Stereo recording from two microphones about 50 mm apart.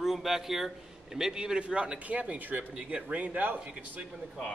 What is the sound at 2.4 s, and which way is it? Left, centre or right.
Speech, right.